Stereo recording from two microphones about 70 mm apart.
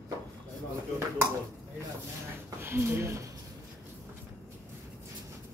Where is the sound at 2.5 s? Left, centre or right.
Right.